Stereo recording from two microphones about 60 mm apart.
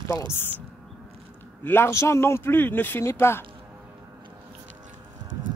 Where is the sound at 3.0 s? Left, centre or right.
Left.